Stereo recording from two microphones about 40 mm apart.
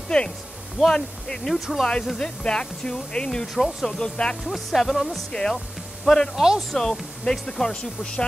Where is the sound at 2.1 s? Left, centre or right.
Centre.